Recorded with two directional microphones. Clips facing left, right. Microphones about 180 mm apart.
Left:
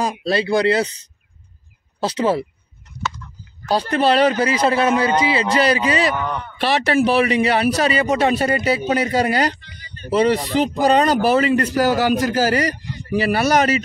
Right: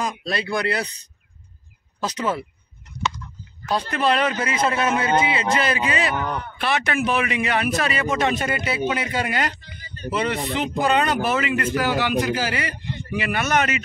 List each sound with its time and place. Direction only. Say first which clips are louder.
0.0 s speech: left 6 dB; 30° left (ahead or behind)
2.0 s a man's voice: left 6 dB; 30° left (ahead or behind)
3.6 s a man's voice: left 4 dB; 30° left (ahead or behind)